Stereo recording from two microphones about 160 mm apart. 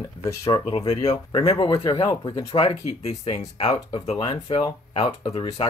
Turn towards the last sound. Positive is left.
turn(degrees=35)  # may be behind; listen again after turning